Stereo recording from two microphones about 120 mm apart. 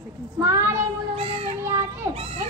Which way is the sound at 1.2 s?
55° right (ahead or behind).